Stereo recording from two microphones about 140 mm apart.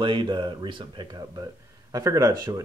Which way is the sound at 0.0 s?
35° right (ahead or behind).